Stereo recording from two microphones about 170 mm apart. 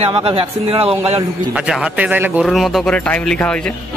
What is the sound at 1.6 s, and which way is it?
A man's voice, 5° right (ahead or behind).